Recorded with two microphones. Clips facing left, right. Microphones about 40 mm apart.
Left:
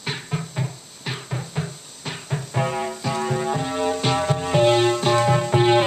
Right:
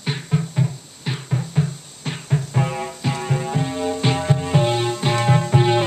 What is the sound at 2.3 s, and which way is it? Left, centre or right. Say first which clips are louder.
Music: right 1 dB; centre.